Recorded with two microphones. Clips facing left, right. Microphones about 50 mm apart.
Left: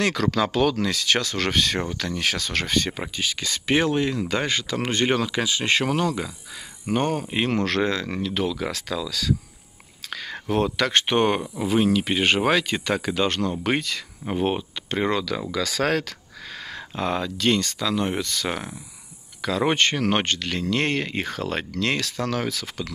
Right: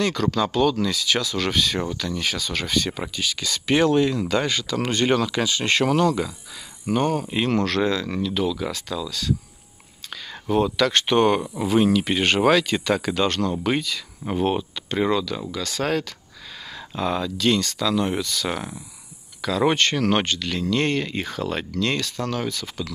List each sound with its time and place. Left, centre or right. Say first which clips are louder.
0.0 s speech: even; left
2.7 s speech: even; left
5.1 s speech: right 2 dB; centre
6.9 s speech: right 2 dB; left
8.7 s speech: left 1 dB; left
10.0 s whispering: left 3 dB; left
10.8 s speech: right 2 dB; left
11.6 s speech: right 1 dB; centre
13.7 s speech: right 1 dB; left
14.2 s speech: right 2 dB; centre
14.9 s speech: right 2 dB; left
15.8 s speech: even; left
16.7 s speech: right 1 dB; left
20.2 s speech: right 1 dB; left